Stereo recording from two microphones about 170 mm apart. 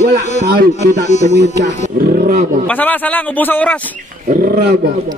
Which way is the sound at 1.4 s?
75° right (ahead or behind).